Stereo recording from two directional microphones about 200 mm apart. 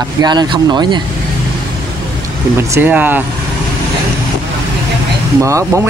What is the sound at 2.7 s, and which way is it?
Speech, 10° right (ahead or behind).